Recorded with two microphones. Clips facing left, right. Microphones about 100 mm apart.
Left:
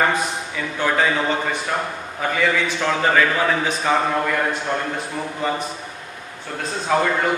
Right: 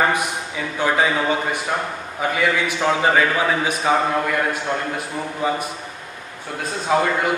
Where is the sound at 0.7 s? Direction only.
15° right (ahead or behind).